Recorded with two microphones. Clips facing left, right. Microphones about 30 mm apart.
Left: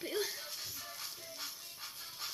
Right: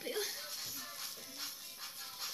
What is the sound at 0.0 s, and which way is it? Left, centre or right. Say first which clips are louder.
Music: left 2 dB; centre.